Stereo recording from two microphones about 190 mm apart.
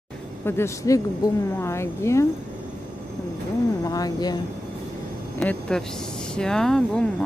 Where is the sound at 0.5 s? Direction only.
15° left (ahead or behind).